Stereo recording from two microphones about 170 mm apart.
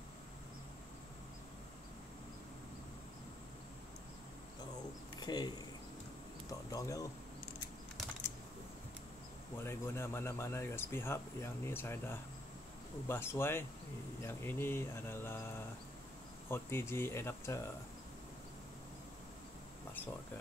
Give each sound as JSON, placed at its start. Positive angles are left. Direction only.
{"t": 5.1, "sound": "a sound", "side_deg": 25}
{"t": 6.7, "sound": "speech", "side_deg": 20}
{"t": 9.6, "sound": "speech", "side_deg": 15}
{"t": 16.4, "sound": "speech", "side_deg": 15}